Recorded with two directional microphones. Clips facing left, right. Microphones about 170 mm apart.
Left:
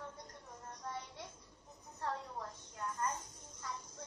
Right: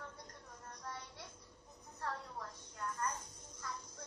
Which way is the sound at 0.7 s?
25° left (ahead or behind).